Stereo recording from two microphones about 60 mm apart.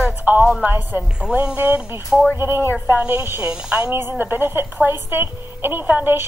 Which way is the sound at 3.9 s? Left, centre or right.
Right.